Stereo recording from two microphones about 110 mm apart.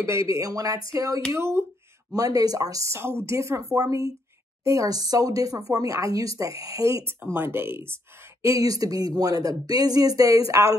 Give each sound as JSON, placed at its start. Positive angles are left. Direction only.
{"t": 0.0, "sound": "a woman's voice", "side_deg": -25}
{"t": 2.3, "sound": "a woman's voice", "side_deg": -35}